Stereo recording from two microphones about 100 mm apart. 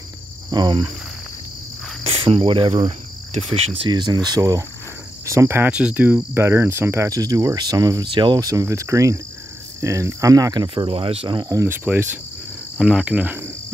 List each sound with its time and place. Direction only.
0.5 s speech: 50° right (ahead or behind)
2.0 s cricket: 70° right (ahead or behind)
3.6 s speech: 75° right (ahead or behind)
3.9 s speech: 45° right (ahead or behind); by 5.7 s 25° right (ahead or behind)
5.7 s speech: 10° right (ahead or behind); by 8.1 s 40° right (ahead or behind)
8.1 s speech: 50° right (ahead or behind)
10.9 s speech: 70° right (ahead or behind)
11.3 s speech: 35° right (ahead or behind)
11.7 s speech: 20° right (ahead or behind)
12.7 s speech: 5° right (ahead or behind)